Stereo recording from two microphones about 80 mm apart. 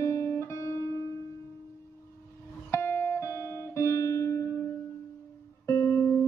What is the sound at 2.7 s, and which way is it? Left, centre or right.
Music, left.